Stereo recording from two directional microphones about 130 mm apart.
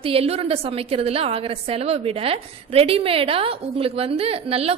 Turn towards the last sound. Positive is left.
turn(degrees=-50)  # may be behind; listen again after turning